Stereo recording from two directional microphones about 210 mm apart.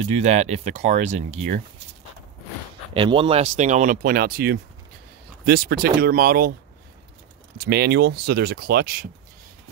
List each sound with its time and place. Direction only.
0.0 s speech: 30° right (ahead or behind)
2.9 s speech: 25° right (ahead or behind); by 6.5 s 45° right (ahead or behind)
7.5 s speech: 50° right (ahead or behind)